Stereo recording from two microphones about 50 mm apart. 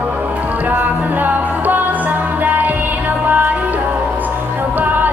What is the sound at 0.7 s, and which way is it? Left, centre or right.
Music, right.